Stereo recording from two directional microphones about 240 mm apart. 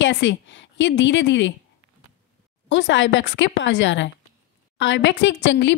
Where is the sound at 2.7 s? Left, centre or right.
Left.